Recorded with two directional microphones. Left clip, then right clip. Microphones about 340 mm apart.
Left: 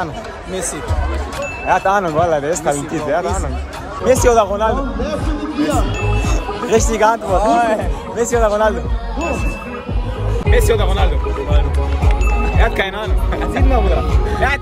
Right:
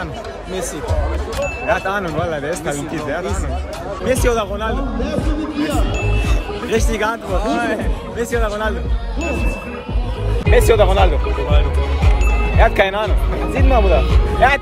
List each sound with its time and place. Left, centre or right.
1.4 s speech: centre
5.0 s speech: centre
5.9 s music: centre
7.3 s speech: centre
10.5 s speech: centre
12.5 s speech: centre
13.8 s speech: centre
14.4 s speech: centre